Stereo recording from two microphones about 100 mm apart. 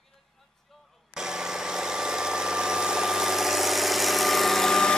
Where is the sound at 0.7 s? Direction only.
5° right (ahead or behind).